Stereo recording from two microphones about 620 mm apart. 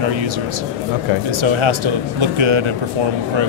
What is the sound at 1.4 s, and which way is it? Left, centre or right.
Speech, right.